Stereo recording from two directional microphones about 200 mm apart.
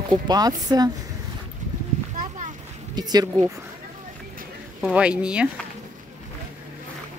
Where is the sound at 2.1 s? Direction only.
40° right (ahead or behind).